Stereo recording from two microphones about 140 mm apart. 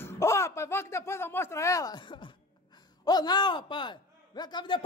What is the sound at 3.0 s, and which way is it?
A man's voice, 30° left (ahead or behind).